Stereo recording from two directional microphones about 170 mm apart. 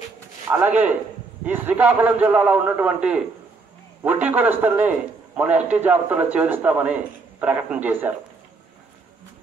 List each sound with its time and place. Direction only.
0.5 s a man's voice: 10° right (ahead or behind)